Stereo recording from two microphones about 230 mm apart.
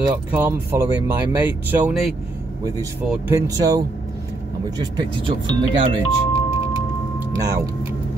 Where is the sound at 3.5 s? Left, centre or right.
Centre.